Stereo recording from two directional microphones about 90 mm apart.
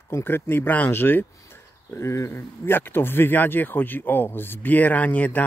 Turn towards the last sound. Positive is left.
turn(degrees=20)  # may be behind; listen again after turning